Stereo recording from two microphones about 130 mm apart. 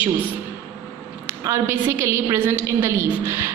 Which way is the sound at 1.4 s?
20° right (ahead or behind).